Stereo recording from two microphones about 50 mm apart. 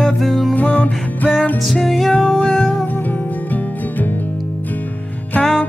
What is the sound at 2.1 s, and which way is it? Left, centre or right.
Music, centre.